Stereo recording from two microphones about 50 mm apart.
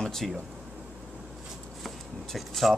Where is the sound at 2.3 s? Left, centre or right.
Centre.